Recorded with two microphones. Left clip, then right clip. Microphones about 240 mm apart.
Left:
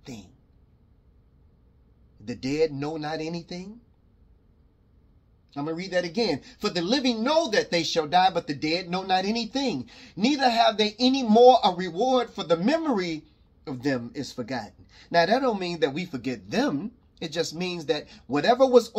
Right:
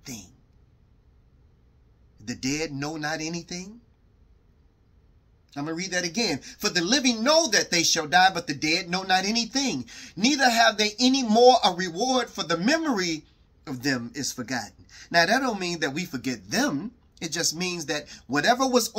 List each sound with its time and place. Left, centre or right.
0.0 s a sound: centre
2.2 s speech: centre
5.5 s speech: right